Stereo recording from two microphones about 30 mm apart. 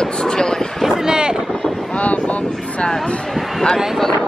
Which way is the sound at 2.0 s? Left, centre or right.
Left.